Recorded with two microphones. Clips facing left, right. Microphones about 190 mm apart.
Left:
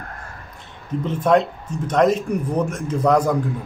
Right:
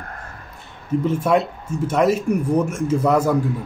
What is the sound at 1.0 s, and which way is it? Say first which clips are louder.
A man's voice: left 2 dB; 10° right (ahead or behind).